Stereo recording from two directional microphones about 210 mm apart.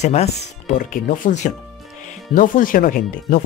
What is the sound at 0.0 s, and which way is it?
Speech, 30° left (ahead or behind).